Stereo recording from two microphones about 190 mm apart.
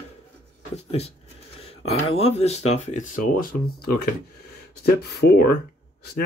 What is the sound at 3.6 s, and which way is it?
Speech, 55° left (ahead or behind).